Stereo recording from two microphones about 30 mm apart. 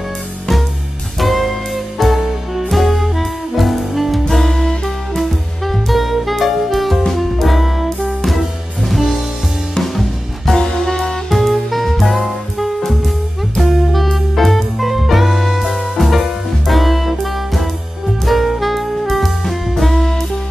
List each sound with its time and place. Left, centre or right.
1.2 s music: centre
4.3 s music: centre
5.2 s music: centre
10.6 s music: centre
11.2 s music: centre
18.2 s saxophone: centre